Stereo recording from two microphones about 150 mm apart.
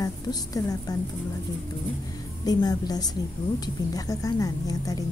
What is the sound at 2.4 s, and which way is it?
Speech, 25° left (ahead or behind).